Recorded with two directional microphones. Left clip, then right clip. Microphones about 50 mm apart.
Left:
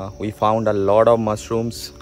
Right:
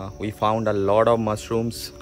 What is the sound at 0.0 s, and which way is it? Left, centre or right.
Speech, centre.